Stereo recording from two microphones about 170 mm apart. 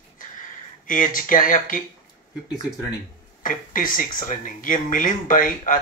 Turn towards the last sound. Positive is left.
turn(degrees=55)  # may be behind; listen again after turning